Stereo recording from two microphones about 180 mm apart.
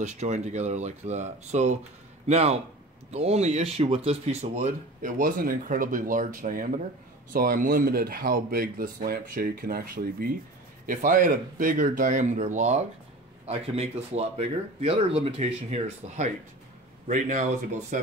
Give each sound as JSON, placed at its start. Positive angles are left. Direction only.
{"t": 0.0, "sound": "speech", "side_deg": -40}